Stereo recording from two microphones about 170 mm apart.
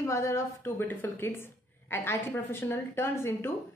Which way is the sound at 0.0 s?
15° left (ahead or behind).